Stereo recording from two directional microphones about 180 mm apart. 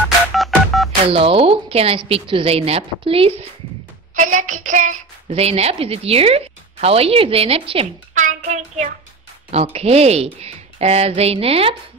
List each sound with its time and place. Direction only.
0.3 s telephone dialing: centre (ahead or behind)
1.0 s a woman's voice: 30° right (ahead or behind)
4.1 s a woman's voice: 45° right (ahead or behind)
8.1 s child singing: 45° right (ahead or behind)
9.5 s a woman's voice: 35° right (ahead or behind)